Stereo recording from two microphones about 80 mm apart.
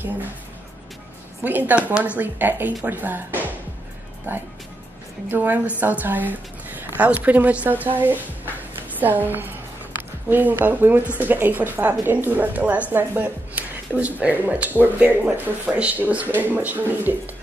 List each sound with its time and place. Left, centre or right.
1.4 s a woman's voice: right